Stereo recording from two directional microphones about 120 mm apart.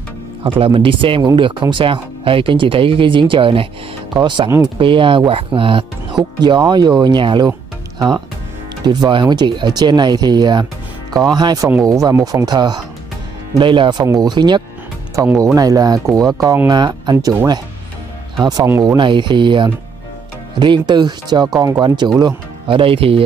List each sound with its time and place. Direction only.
0.4 s speech: 50° right (ahead or behind)
8.8 s speech: 35° right (ahead or behind)
15.1 s speech: 25° right (ahead or behind)
18.4 s speech: 35° right (ahead or behind)
18.9 s speech: 40° right (ahead or behind)